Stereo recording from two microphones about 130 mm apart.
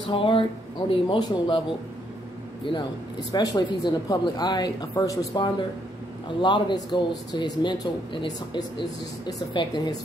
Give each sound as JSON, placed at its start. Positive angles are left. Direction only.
{"t": 0.0, "sound": "speech", "side_deg": 40}
{"t": 3.3, "sound": "speech", "side_deg": 35}